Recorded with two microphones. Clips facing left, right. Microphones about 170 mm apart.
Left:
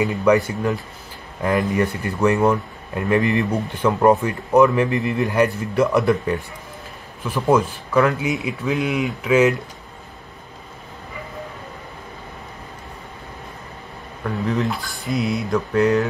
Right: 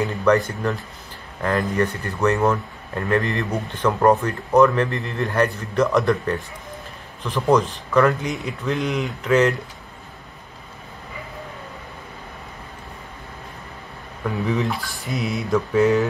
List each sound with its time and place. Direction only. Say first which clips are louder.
0.1 s a man's voice: even; 15° left (ahead or behind)
1.4 s a man's voice: left 2 dB; 15° left (ahead or behind)
3.5 s a man's voice: left 2 dB; 5° left (ahead or behind)
14.2 s speech: left 1 dB; centre (ahead or behind)